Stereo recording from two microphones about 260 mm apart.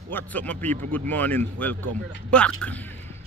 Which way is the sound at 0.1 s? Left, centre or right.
Centre.